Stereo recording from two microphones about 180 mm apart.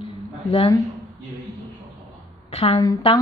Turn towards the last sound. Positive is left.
turn(degrees=25)  # may be behind; listen again after turning